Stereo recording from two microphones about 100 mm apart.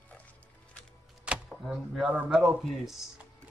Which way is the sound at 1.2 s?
10° right (ahead or behind).